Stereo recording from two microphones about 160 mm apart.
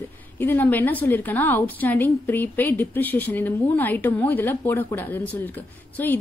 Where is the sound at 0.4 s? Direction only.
10° left (ahead or behind).